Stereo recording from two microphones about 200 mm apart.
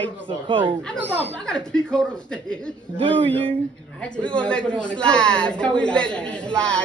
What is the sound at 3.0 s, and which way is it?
Speech, 25° right (ahead or behind).